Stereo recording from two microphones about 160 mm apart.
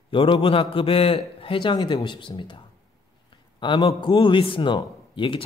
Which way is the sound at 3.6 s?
30° left (ahead or behind).